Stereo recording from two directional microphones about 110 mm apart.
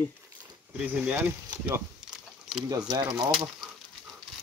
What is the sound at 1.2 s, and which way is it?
Speech, 25° right (ahead or behind).